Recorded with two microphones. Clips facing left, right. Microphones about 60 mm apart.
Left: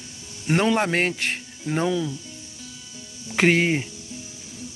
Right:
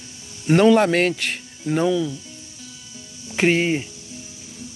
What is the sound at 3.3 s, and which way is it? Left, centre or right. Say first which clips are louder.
Speech: right 1 dB; left.